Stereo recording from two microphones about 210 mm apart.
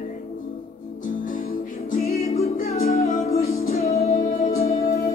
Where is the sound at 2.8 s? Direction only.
45° left (ahead or behind).